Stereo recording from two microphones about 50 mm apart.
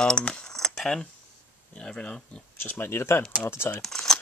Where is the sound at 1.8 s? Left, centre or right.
Left.